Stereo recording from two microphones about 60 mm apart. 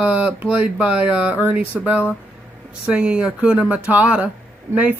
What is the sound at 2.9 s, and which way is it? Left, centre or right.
Speech, centre.